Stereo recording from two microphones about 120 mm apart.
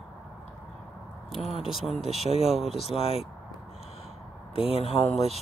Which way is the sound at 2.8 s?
55° left (ahead or behind).